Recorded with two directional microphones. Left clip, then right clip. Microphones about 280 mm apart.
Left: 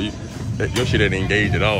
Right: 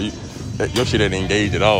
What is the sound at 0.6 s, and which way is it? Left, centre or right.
Speech, centre.